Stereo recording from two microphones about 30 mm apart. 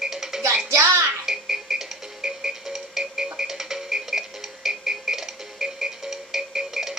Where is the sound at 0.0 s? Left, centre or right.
Centre.